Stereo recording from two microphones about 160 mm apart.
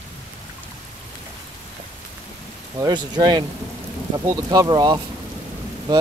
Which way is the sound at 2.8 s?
25° right (ahead or behind).